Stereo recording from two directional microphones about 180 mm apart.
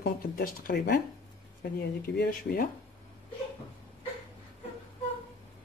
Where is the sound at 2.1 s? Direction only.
65° left (ahead or behind).